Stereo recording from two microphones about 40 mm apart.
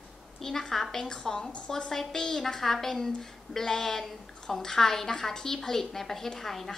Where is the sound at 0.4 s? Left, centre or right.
Centre.